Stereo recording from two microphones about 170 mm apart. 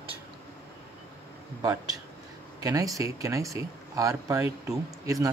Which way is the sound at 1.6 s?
20° right (ahead or behind).